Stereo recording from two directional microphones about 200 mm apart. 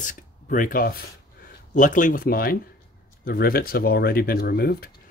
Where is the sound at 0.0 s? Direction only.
40° left (ahead or behind).